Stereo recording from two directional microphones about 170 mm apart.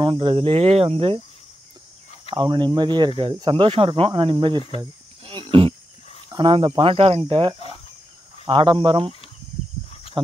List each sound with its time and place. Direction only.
0.0 s speech: 30° right (ahead or behind)
2.3 s speech: 25° right (ahead or behind)
5.2 s wild animals: 30° right (ahead or behind)
6.2 s speech: 25° right (ahead or behind)
10.2 s speech: 30° right (ahead or behind)